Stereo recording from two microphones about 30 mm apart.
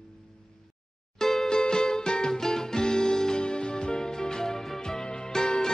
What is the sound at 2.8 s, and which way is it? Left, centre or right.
Music, left.